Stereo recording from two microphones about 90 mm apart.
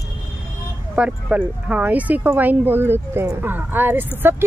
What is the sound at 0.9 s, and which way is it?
Speech, 15° right (ahead or behind).